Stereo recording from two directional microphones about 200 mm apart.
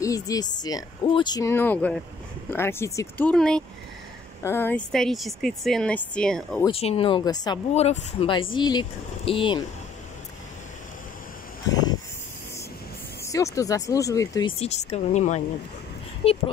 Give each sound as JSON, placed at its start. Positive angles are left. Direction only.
{"t": 0.0, "sound": "speech", "side_deg": 15}
{"t": 6.6, "sound": "speech", "side_deg": 30}
{"t": 7.7, "sound": "a woman's voice", "side_deg": 35}
{"t": 11.7, "sound": "a sound", "side_deg": 20}
{"t": 13.2, "sound": "speech", "side_deg": 15}
{"t": 14.6, "sound": "a woman's voice", "side_deg": 35}